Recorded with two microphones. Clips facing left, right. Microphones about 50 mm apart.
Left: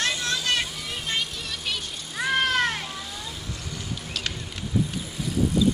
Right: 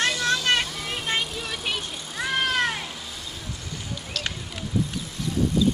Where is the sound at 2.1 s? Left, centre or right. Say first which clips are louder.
Left 1 dB; centre.